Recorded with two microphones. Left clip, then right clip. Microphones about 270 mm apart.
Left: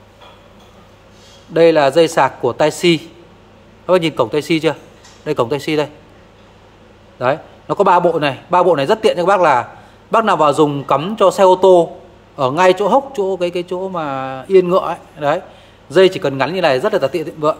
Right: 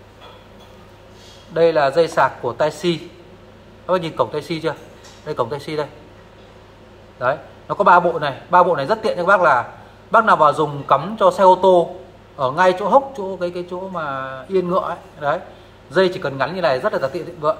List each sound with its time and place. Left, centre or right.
1.5 s a man's voice: left
7.2 s a man's voice: left